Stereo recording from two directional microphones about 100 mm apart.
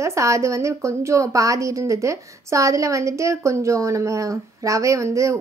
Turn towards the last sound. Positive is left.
turn(degrees=-30)  # may be behind; listen again after turning